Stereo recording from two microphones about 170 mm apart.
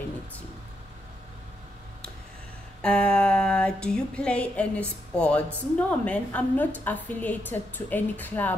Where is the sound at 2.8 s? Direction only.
5° left (ahead or behind).